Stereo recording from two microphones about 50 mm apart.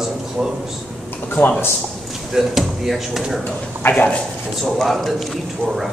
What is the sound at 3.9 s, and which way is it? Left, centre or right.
Speech, left.